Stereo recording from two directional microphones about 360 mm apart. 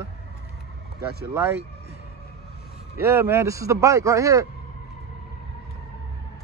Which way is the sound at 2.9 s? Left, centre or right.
Centre.